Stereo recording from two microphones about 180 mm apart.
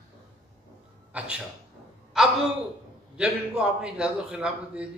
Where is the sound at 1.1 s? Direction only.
5° right (ahead or behind).